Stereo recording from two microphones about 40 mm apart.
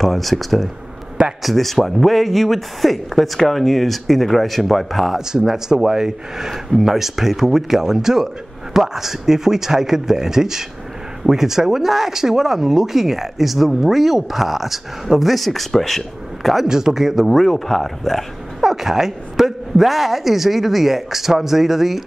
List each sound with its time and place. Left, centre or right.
0.0 s speech: centre
5.3 s speech: centre
16.6 s speech: centre
18.6 s speech: centre